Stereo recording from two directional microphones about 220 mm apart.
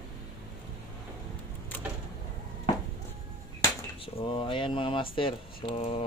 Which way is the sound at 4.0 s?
25° left (ahead or behind).